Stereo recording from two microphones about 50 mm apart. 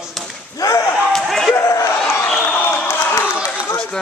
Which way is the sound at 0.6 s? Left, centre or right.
Left.